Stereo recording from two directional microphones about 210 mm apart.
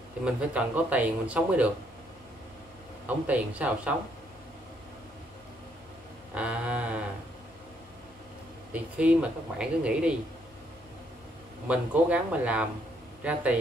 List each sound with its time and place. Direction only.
0.2 s speech: 5° right (ahead or behind)
3.3 s speech: 5° right (ahead or behind)
6.3 s a sound: 5° right (ahead or behind)
8.7 s speech: 5° right (ahead or behind)
11.6 s speech: 5° right (ahead or behind)